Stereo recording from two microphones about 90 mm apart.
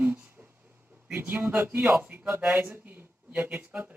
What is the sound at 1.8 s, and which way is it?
Speech, 5° right (ahead or behind).